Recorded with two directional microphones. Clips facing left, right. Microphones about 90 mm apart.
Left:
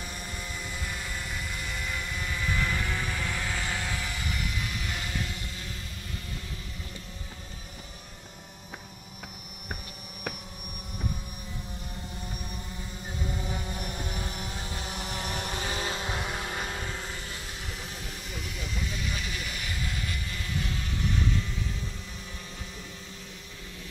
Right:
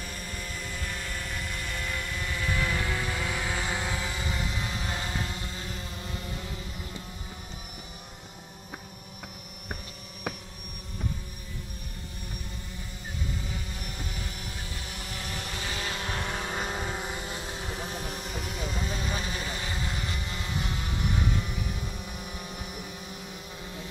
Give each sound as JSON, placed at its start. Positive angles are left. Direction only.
{"t": 0.4, "sound": "vehicle", "side_deg": 10}
{"t": 13.7, "sound": "vehicle", "side_deg": 25}
{"t": 16.3, "sound": "vehicle", "side_deg": 0}
{"t": 16.6, "sound": "vehicle", "side_deg": -15}